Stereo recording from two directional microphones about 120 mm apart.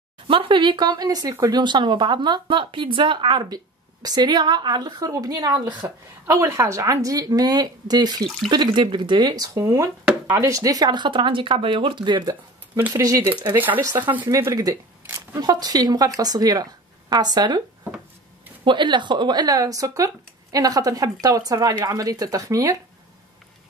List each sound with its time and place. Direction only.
0.3 s speech: 45° right (ahead or behind)
12.7 s speech: 20° right (ahead or behind)
18.7 s speech: 40° right (ahead or behind)